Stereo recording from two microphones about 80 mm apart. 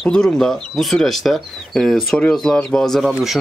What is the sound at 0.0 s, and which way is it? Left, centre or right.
Speech, centre.